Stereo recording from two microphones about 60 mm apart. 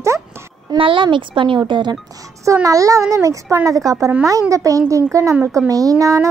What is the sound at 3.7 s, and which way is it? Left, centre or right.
A child's voice, right.